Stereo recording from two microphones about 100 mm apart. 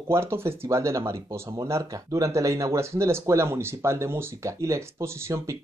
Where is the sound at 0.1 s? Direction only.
25° right (ahead or behind).